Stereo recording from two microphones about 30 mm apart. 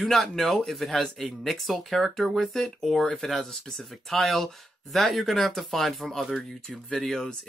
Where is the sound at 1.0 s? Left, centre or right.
Centre.